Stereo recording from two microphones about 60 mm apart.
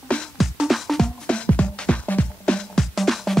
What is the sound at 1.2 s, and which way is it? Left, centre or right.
Music, centre.